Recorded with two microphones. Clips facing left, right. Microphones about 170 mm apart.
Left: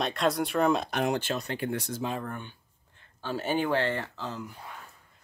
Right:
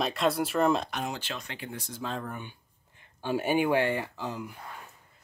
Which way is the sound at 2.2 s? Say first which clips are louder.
Left 1 dB; 10° right (ahead or behind).